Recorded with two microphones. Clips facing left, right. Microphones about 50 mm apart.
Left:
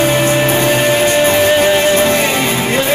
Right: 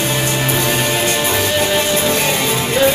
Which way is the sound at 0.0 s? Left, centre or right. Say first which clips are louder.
Left 6 dB; left.